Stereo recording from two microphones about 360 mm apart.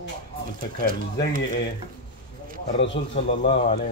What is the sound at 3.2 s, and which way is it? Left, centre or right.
Speech, centre.